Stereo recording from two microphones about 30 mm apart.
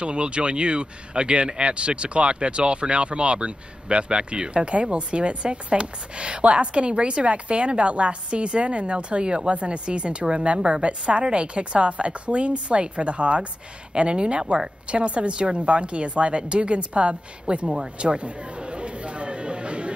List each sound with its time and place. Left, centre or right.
0.0 s speech: right
14.9 s speech: right
17.9 s chatter: right